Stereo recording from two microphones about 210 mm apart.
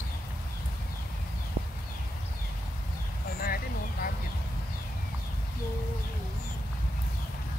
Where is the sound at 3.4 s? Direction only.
45° left (ahead or behind).